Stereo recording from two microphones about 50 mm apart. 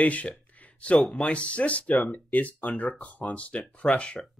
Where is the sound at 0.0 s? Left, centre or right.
Left.